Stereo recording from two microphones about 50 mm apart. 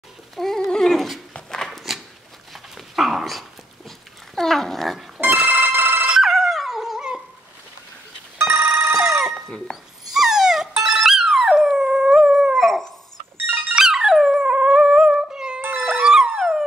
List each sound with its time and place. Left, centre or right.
0.4 s a sound: centre
1.3 s dog: centre
1.7 s a sound: centre
2.5 s dog: centre
5.3 s telephone bell ringing: right
6.3 s dog: centre
8.5 s a sound: right
8.9 s telephone bell ringing: centre
9.3 s a sound: centre
10.0 s dog: centre
12.5 s howl: centre
13.4 s dog: right
13.7 s dog: centre
16.1 s dog: centre